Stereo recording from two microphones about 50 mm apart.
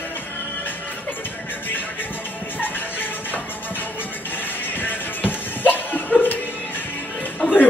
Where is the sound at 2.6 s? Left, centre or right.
Left.